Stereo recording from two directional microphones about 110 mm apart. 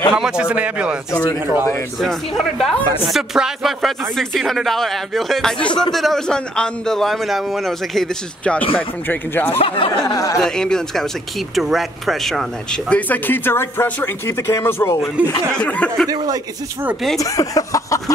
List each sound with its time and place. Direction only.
0.1 s speech: 5° right (ahead or behind)
1.1 s a sound: 30° left (ahead or behind)
2.0 s a man's voice: centre (ahead or behind)
8.7 s speech: 15° left (ahead or behind)
9.6 s speech: 60° left (ahead or behind)
10.0 s a sound: 30° left (ahead or behind)
10.4 s a man's voice: 5° left (ahead or behind); by 15.0 s 25° left (ahead or behind)
15.5 s speech: 10° left (ahead or behind)
17.2 s a sound: 30° left (ahead or behind)